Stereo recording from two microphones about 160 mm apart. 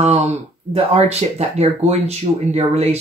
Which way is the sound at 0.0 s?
35° right (ahead or behind).